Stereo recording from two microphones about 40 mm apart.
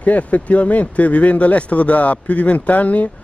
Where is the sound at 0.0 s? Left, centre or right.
Left.